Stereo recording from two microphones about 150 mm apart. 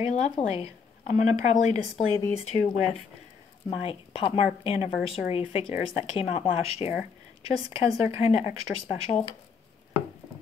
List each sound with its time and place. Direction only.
0.0 s speech: 45° left (ahead or behind)
3.7 s speech: 40° left (ahead or behind)